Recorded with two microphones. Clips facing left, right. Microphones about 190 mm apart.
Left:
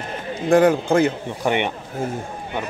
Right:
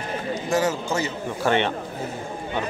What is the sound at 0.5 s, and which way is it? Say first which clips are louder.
Speech: left 9 dB; 55° left (ahead or behind).